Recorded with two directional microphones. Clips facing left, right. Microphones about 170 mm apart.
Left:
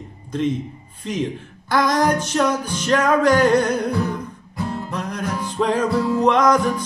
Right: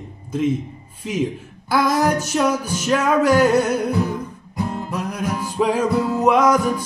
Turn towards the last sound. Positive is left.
turn(degrees=-10)  # may be behind; listen again after turning